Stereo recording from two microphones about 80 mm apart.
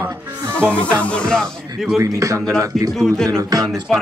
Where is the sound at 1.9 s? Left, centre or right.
Right.